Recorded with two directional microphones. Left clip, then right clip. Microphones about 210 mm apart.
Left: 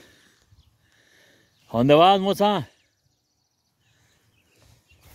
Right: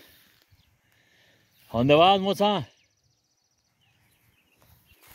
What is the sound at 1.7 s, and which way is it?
Speech, 35° left (ahead or behind).